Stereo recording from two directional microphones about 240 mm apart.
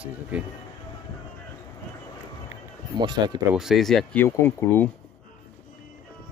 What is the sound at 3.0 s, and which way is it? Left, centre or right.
Speech, centre.